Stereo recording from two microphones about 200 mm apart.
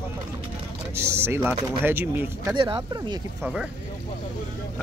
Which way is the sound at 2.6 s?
25° right (ahead or behind).